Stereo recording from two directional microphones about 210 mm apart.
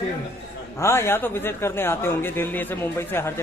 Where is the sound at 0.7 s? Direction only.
10° left (ahead or behind).